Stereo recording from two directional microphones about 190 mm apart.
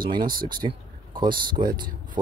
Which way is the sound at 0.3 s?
50° right (ahead or behind).